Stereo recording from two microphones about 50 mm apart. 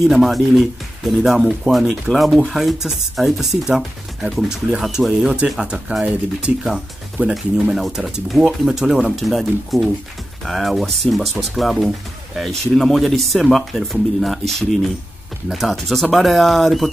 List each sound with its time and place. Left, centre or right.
0.0 s speech: centre
5.2 s speech: centre